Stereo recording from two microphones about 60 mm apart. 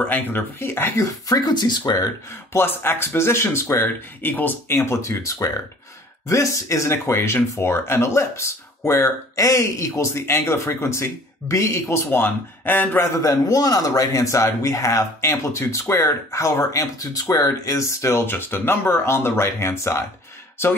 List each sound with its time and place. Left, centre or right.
0.1 s speech: left
0.9 s speech: left
2.5 s speech: left
3.7 s speech: left
4.8 s speech: left
12.1 s speech: left
13.2 s speech: left
16.7 s speech: left
17.3 s speech: left
18.1 s speech: left